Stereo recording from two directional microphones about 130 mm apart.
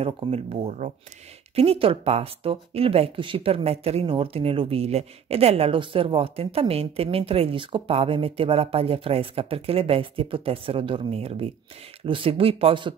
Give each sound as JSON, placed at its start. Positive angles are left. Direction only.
{"t": 0.0, "sound": "speech", "side_deg": -55}
{"t": 1.5, "sound": "speech", "side_deg": -50}